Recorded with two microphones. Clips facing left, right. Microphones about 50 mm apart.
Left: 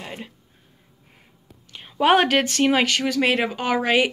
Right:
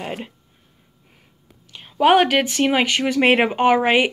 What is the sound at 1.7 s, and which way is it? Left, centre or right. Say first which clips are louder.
A woman's voice: right 3 dB; centre.